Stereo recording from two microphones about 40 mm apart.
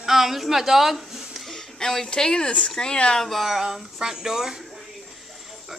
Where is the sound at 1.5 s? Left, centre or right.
Centre.